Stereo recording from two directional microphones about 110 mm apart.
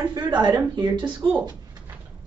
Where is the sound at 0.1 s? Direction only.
45° right (ahead or behind).